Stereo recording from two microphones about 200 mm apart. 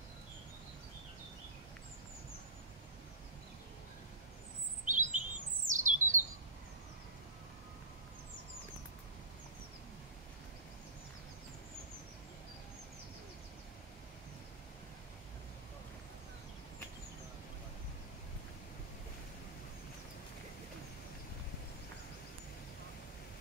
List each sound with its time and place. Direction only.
4.8 s chirp: 40° right (ahead or behind)
5.7 s squawk: 40° right (ahead or behind)